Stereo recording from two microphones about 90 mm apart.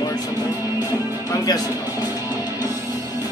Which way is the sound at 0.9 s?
40° left (ahead or behind).